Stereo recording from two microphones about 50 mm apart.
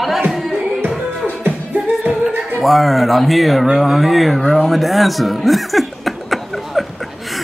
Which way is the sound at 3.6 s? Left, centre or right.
Centre.